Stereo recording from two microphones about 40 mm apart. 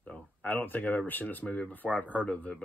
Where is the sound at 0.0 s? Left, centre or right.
Left.